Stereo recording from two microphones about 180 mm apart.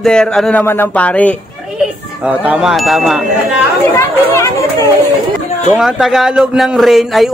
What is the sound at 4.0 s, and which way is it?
Chatter, 15° left (ahead or behind).